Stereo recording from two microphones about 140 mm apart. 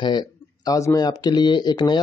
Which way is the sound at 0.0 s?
30° left (ahead or behind).